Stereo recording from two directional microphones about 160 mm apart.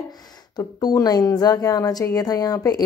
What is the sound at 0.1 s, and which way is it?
Speech, 25° left (ahead or behind).